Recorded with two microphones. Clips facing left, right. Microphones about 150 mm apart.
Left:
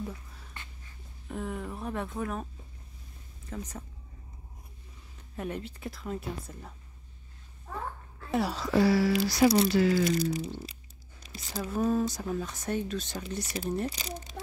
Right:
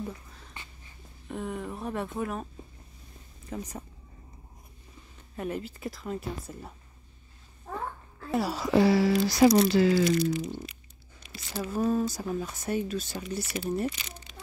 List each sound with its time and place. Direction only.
1.3 s speech: centre (ahead or behind)
3.4 s speech: 10° right (ahead or behind)
5.3 s speech: centre (ahead or behind)
8.3 s speech: centre (ahead or behind)
8.6 s speech: 20° right (ahead or behind)
10.1 s a sound: 40° left (ahead or behind)
11.5 s speech: 5° right (ahead or behind)
13.4 s a sound: 40° left (ahead or behind)
13.8 s mechanisms: 35° left (ahead or behind)